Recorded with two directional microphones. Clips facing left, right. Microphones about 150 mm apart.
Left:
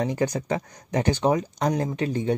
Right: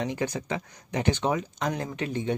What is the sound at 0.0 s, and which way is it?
Speech, 40° left (ahead or behind).